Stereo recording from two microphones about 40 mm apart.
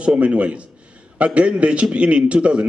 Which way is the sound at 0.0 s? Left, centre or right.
Right.